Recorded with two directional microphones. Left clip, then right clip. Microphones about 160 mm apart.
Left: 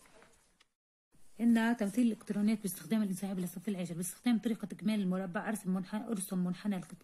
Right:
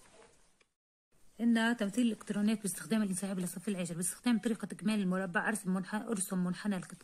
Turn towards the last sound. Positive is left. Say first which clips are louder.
# right 1 dB
turn(degrees=-20)  # may be behind; listen again after turning